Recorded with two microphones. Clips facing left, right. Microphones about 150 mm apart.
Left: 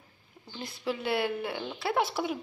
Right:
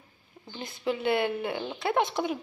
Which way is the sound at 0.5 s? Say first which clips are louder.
Right 3 dB; centre (ahead or behind).